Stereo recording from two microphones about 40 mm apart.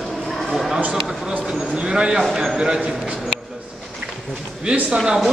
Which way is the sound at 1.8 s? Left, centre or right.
Centre.